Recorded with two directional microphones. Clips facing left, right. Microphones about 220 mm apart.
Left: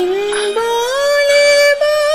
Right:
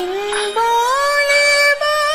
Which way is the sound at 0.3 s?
25° left (ahead or behind).